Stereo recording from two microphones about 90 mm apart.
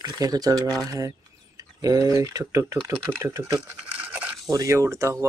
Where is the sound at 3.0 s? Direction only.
25° right (ahead or behind).